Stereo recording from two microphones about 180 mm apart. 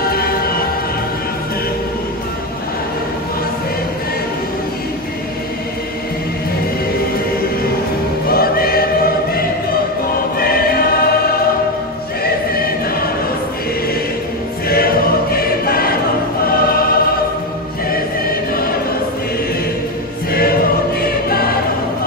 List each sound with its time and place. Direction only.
0.0 s music: 55° left (ahead or behind)
8.3 s choir: 55° left (ahead or behind)
14.7 s choir: 55° left (ahead or behind)
21.0 s choir: 55° left (ahead or behind)